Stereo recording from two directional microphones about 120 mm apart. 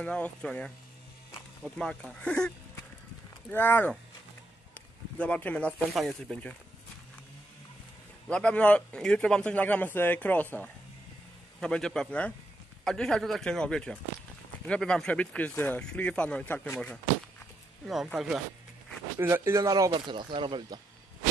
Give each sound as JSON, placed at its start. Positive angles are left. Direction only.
{"t": 0.0, "sound": "a man's voice", "side_deg": 10}
{"t": 5.2, "sound": "a man's voice", "side_deg": 10}
{"t": 8.3, "sound": "a man's voice", "side_deg": 10}
{"t": 17.8, "sound": "a man's voice", "side_deg": -5}
{"t": 19.1, "sound": "speech", "side_deg": -20}
{"t": 19.9, "sound": "speech", "side_deg": -40}